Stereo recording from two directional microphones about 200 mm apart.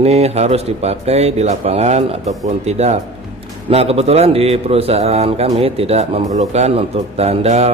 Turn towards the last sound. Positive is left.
turn(degrees=-30)  # may be behind; listen again after turning